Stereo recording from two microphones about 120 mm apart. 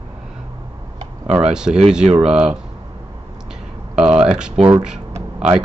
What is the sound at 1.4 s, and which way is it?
Speech, 5° right (ahead or behind).